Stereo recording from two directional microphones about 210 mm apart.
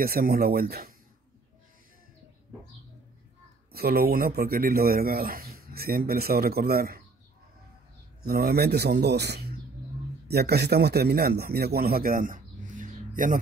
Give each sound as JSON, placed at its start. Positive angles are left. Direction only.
{"t": 0.0, "sound": "speech", "side_deg": -45}
{"t": 3.7, "sound": "speech", "side_deg": -45}
{"t": 8.3, "sound": "a man's voice", "side_deg": -45}